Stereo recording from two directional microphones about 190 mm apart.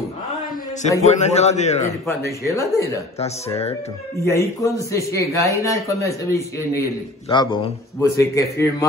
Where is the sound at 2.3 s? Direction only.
15° left (ahead or behind).